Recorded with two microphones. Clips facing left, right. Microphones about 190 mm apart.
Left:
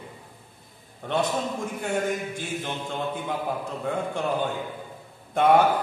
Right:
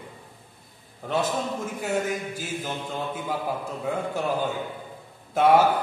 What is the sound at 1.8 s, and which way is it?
Speech, 5° right (ahead or behind).